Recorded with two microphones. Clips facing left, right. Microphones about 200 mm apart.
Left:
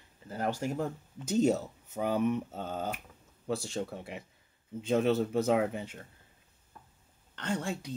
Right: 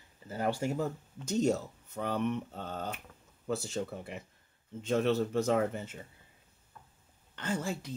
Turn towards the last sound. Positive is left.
turn(degrees=-5)  # may be behind; listen again after turning